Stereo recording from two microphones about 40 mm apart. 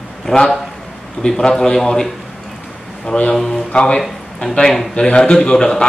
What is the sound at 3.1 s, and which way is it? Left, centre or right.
A man's voice, centre.